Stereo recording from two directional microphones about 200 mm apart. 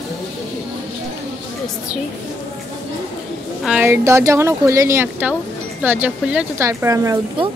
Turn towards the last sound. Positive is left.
turn(degrees=-15)  # may be behind; listen again after turning